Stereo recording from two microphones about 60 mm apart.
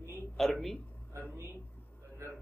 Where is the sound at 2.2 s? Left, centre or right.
Right.